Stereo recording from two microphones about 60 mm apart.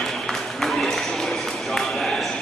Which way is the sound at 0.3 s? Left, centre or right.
Centre.